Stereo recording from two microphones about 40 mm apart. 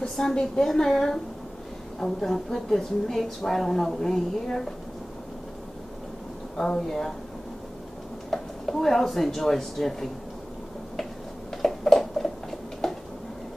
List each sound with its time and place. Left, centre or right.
0.1 s a woman's voice: centre
6.5 s a woman's voice: centre
8.3 s speech: centre
11.8 s tick-tock: centre